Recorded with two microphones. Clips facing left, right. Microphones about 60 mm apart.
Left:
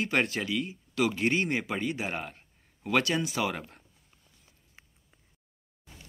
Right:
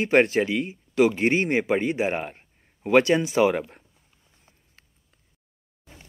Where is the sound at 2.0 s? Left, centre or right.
Right.